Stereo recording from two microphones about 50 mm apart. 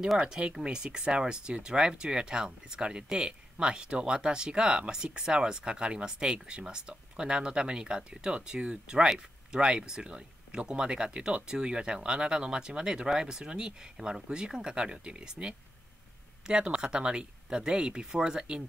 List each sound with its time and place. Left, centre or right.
0.2 s speech: right